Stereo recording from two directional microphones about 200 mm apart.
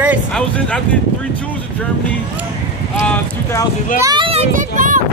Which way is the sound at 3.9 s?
20° right (ahead or behind).